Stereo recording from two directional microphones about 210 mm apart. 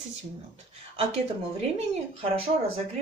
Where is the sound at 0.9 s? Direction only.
30° right (ahead or behind).